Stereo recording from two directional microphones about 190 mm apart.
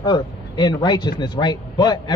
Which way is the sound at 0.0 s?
20° left (ahead or behind).